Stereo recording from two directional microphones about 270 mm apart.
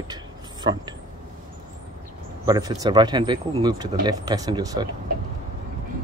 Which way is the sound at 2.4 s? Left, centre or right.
Centre.